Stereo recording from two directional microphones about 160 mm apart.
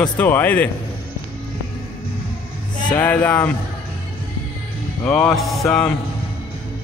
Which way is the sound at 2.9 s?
10° left (ahead or behind).